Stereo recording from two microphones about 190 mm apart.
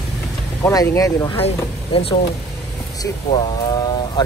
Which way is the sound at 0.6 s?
15° left (ahead or behind).